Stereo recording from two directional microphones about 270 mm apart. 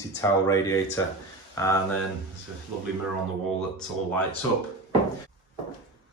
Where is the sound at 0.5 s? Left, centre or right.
Centre.